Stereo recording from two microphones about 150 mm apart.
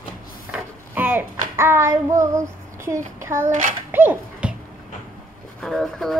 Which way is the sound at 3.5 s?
60° right (ahead or behind).